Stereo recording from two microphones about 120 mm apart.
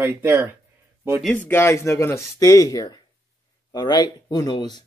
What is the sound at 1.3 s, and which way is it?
Speech, 15° left (ahead or behind).